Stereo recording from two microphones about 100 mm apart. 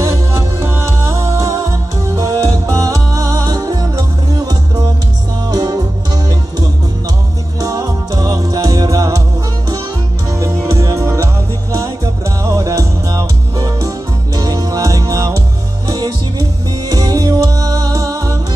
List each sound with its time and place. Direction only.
0.0 s music: 30° right (ahead or behind)
7.6 s music: 35° right (ahead or behind)
10.4 s music: 35° right (ahead or behind)
12.4 s music: 35° right (ahead or behind)